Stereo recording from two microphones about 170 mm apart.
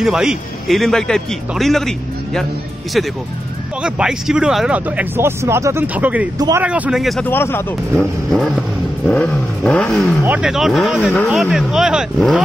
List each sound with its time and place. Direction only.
0.0 s a man's voice: 5° right (ahead or behind)
3.8 s speech: 5° right (ahead or behind)
6.3 s speech: 25° right (ahead or behind)
6.6 s a man's voice: 5° right (ahead or behind)
7.2 s speech: 15° left (ahead or behind)
10.2 s a man's voice: 5° right (ahead or behind)